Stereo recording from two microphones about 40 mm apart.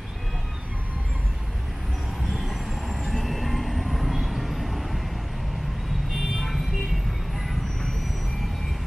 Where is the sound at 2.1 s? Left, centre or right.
Centre.